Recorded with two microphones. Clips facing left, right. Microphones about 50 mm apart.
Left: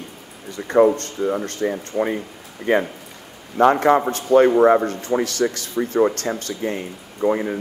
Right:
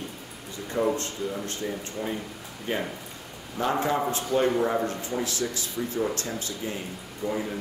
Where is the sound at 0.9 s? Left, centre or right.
Left.